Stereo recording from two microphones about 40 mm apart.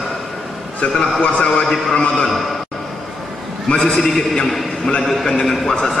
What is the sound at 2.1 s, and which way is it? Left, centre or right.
Speech, centre.